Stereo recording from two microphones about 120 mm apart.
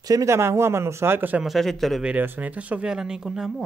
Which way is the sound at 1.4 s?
Centre (ahead or behind).